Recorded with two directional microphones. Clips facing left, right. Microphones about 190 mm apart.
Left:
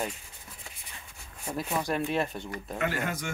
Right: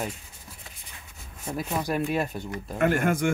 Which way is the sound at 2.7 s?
50° right (ahead or behind).